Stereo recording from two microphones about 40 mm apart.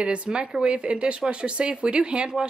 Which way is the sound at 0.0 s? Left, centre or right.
Right.